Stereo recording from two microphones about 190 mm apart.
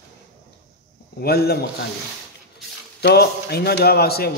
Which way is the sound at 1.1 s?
55° left (ahead or behind).